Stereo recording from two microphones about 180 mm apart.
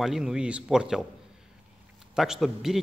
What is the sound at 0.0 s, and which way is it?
A man's voice, centre (ahead or behind).